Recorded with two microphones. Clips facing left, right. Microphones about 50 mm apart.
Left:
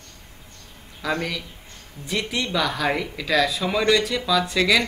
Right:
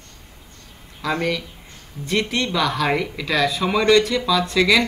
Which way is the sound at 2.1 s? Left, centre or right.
Centre.